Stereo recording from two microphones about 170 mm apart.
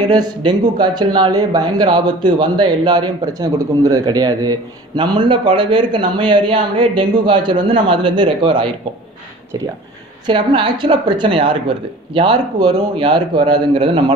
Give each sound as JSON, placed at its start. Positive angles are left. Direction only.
{"t": 0.1, "sound": "a man's voice", "side_deg": -25}
{"t": 10.2, "sound": "a man's voice", "side_deg": -30}